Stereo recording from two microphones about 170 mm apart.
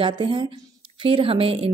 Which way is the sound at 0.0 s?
30° right (ahead or behind).